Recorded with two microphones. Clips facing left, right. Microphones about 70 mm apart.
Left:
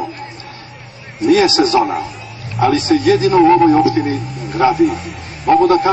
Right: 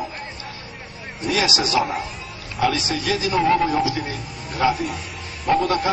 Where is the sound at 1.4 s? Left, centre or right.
Left.